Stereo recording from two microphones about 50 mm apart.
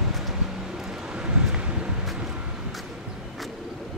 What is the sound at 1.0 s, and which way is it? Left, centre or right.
Vehicle, centre.